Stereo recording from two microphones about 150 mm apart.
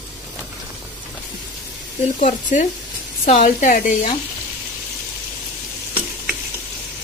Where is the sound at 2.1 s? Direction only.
55° left (ahead or behind).